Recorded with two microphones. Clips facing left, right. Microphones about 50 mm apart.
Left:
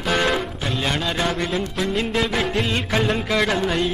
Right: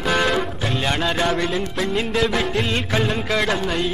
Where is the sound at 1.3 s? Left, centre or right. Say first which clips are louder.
Right 2 dB; centre.